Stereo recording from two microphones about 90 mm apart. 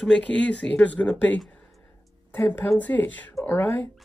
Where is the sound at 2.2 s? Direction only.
20° left (ahead or behind).